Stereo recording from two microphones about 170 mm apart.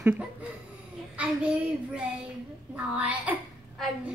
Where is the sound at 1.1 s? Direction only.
5° right (ahead or behind).